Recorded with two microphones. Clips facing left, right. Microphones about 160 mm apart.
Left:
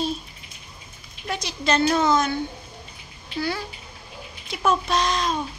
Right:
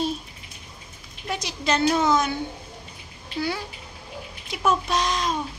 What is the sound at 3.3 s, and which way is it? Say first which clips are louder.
A child's voice: even; 15° right (ahead or behind).